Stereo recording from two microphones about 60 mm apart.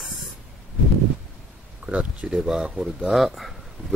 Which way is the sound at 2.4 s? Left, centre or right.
Centre.